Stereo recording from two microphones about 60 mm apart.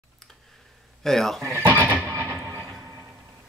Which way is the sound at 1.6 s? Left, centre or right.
Right.